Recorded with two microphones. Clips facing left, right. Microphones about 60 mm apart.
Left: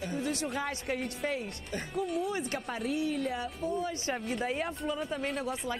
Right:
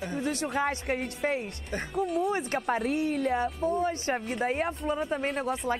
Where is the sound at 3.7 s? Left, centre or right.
Right.